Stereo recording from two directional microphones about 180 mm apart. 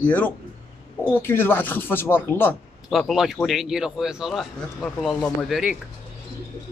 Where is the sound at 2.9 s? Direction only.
Centre (ahead or behind).